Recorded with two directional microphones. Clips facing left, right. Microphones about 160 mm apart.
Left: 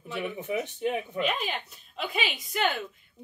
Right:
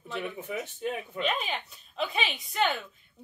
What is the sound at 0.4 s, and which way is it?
Speech, 15° left (ahead or behind).